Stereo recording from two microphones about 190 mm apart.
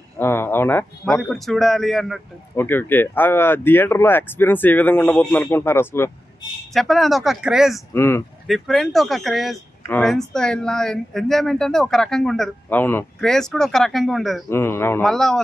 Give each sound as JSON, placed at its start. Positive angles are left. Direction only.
{"t": 0.2, "sound": "speech", "side_deg": 10}
{"t": 2.5, "sound": "speech", "side_deg": 10}
{"t": 6.7, "sound": "speech", "side_deg": 0}
{"t": 7.9, "sound": "speech", "side_deg": 10}
{"t": 8.5, "sound": "speech", "side_deg": 0}
{"t": 14.5, "sound": "speech", "side_deg": 10}
{"t": 15.0, "sound": "speech", "side_deg": 0}